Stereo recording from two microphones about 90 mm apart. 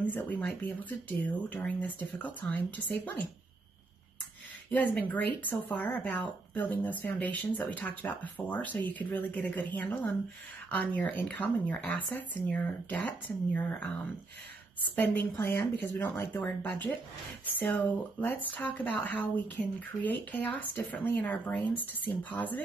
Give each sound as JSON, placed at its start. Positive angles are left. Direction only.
{"t": 0.0, "sound": "speech", "side_deg": 20}
{"t": 4.6, "sound": "speech", "side_deg": 15}
{"t": 15.0, "sound": "speech", "side_deg": 25}